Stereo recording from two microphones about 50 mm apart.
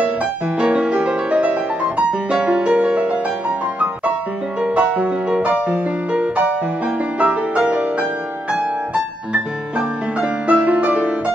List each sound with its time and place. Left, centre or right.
0.6 s music: right